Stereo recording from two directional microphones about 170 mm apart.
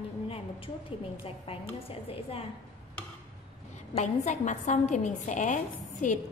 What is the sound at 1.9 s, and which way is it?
Speech, 35° left (ahead or behind).